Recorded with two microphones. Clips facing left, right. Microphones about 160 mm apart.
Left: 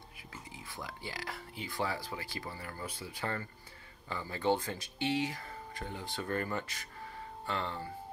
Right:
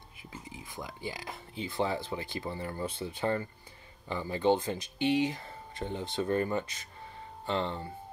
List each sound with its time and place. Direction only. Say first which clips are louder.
0.3 s speech: right 3 dB; 20° right (ahead or behind)